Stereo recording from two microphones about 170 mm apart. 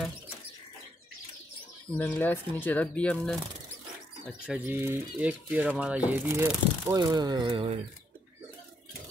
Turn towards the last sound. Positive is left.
turn(degrees=-30)  # may be behind; listen again after turning